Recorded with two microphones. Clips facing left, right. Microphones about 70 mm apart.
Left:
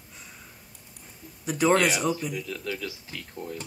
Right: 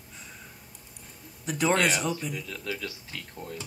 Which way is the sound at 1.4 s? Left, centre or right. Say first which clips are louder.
Left 3 dB; centre.